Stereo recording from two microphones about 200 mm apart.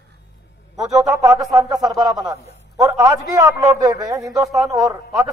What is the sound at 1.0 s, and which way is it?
A man's voice, 15° right (ahead or behind).